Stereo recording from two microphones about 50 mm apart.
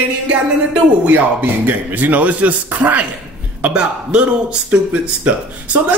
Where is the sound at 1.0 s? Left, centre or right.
Right.